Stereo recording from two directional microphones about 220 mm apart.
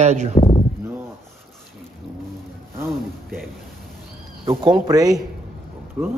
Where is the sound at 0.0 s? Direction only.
30° right (ahead or behind).